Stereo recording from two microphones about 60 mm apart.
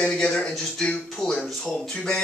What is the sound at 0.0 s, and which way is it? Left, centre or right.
Speech, centre.